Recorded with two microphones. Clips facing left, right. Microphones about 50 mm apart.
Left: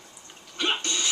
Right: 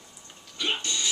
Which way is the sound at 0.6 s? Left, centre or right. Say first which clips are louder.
Left 2 dB; left.